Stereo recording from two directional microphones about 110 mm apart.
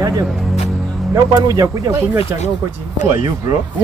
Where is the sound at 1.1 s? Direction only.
30° right (ahead or behind).